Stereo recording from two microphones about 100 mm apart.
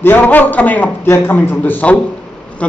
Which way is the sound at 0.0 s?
20° left (ahead or behind).